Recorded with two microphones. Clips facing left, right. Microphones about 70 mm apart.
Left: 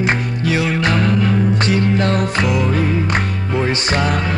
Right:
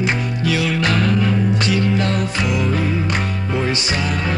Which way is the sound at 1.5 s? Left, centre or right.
Left.